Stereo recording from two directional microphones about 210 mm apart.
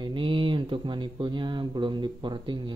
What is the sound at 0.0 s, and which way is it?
Speech, 25° right (ahead or behind).